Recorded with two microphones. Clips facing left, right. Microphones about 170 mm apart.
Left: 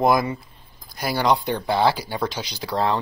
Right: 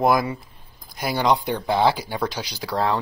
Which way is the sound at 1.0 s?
20° right (ahead or behind).